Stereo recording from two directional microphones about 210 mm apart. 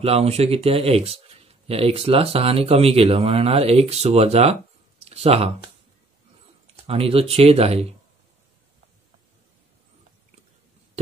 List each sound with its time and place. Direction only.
0.0 s speech: 30° right (ahead or behind)
6.9 s speech: 25° right (ahead or behind)